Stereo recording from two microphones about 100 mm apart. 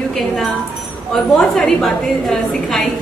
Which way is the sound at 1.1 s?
5° left (ahead or behind).